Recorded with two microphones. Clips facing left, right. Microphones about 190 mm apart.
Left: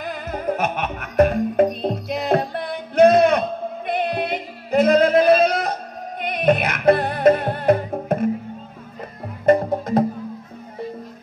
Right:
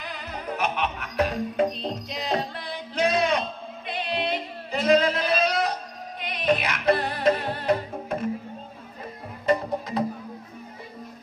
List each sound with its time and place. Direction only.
0.0 s music: 50° left (ahead or behind)
9.5 s music: 50° left (ahead or behind)